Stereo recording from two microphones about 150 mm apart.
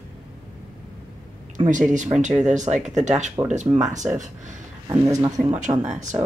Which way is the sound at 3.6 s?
5° right (ahead or behind).